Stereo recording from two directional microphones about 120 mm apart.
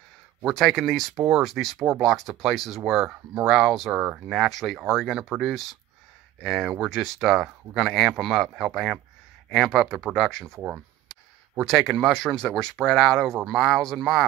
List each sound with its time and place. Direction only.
0.5 s speech: 5° left (ahead or behind)